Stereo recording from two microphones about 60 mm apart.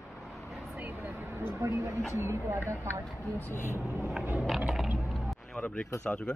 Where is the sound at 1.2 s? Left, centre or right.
Right.